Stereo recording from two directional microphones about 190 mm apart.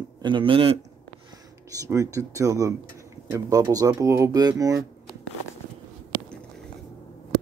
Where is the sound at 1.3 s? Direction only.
15° right (ahead or behind).